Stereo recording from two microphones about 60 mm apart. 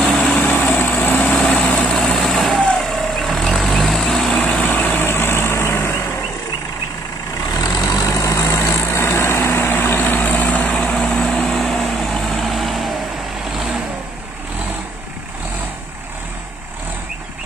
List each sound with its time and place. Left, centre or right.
0.3 s vehicle: centre
0.6 s vehicle: left
1.4 s vehicle: centre
4.4 s vehicle: centre
4.6 s vehicle: left
7.5 s vehicle: left
10.8 s vehicle: centre